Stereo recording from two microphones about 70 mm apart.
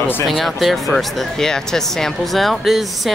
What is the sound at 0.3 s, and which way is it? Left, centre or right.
Speech, centre.